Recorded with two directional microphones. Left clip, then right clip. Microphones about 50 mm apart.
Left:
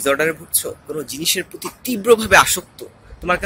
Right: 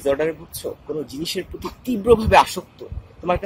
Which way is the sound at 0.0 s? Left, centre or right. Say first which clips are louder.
Left 3 dB; right.